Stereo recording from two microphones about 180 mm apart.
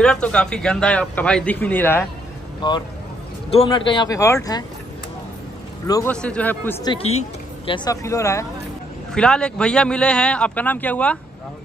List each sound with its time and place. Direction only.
0.0 s a man's voice: 5° left (ahead or behind)
2.6 s speech: 25° left (ahead or behind)
5.9 s speech: 20° left (ahead or behind)
6.1 s a man's voice: 5° left (ahead or behind)
6.8 s speech: 25° left (ahead or behind)
9.1 s a man's voice: 5° left (ahead or behind)